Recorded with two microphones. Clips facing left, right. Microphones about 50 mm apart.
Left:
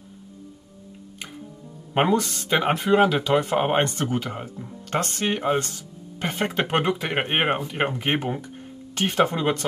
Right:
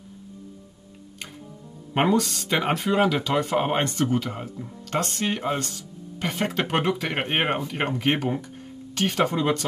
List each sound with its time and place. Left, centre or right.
2.0 s speech: centre
6.6 s speech: left